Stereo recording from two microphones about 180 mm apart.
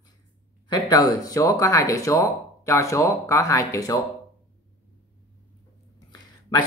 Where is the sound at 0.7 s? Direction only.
25° left (ahead or behind).